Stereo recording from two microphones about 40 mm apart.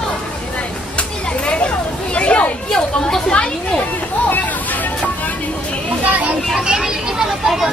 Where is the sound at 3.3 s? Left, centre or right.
Left.